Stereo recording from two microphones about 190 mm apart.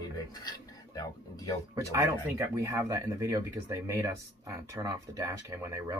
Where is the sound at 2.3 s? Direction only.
15° right (ahead or behind).